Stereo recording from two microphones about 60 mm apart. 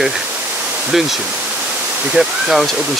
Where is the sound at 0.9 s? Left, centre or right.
Centre.